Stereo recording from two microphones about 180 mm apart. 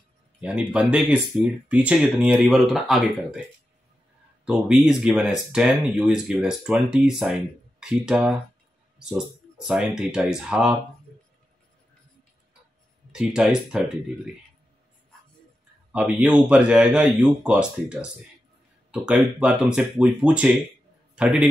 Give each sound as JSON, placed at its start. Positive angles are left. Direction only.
{"t": 0.4, "sound": "speech", "side_deg": -5}
{"t": 4.5, "sound": "speech", "side_deg": -5}
{"t": 13.1, "sound": "speech", "side_deg": -5}
{"t": 15.9, "sound": "a man's voice", "side_deg": -5}